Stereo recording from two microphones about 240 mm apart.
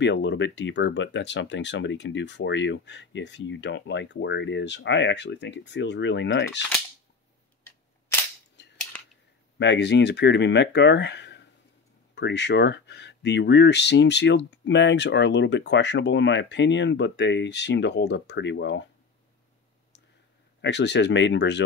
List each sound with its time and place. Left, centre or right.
0.0 s speech: left
9.6 s speech: left
20.6 s speech: left